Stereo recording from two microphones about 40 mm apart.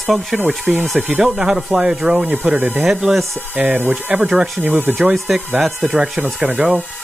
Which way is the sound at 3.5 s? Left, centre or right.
Right.